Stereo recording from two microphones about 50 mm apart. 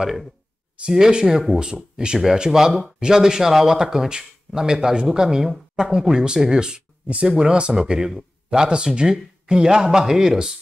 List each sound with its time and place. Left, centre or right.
0.0 s speech: centre
0.8 s speech: centre